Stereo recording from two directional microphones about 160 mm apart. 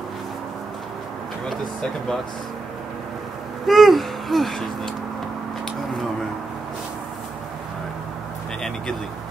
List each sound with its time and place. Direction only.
1.5 s speech: 5° left (ahead or behind)
3.6 s speech: centre (ahead or behind)